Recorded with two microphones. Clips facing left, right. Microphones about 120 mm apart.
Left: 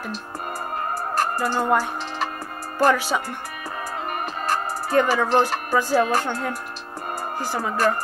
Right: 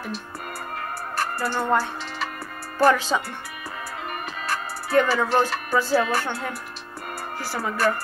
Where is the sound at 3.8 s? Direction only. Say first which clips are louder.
Left 5 dB; 40° left (ahead or behind).